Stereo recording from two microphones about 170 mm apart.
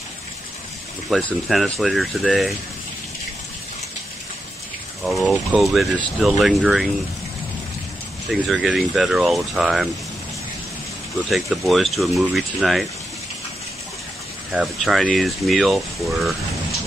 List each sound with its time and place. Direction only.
1.1 s speech: centre (ahead or behind)
5.0 s speech: centre (ahead or behind)
8.3 s speech: centre (ahead or behind)
11.2 s speech: centre (ahead or behind)
14.5 s speech: 5° right (ahead or behind)